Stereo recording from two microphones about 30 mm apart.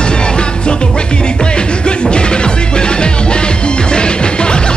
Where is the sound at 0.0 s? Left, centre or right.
Left.